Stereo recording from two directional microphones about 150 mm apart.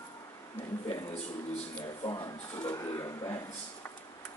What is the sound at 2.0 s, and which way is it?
Speech, 25° left (ahead or behind).